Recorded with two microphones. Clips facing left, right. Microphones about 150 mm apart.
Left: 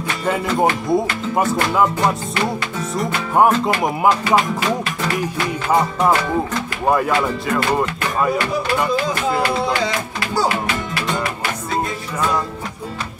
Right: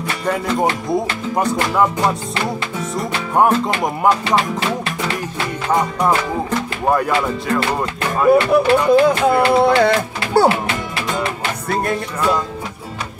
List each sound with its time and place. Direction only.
0.2 s music: 5° left (ahead or behind)
3.3 s music: centre (ahead or behind)
6.9 s music: centre (ahead or behind)
8.3 s speech: 60° right (ahead or behind)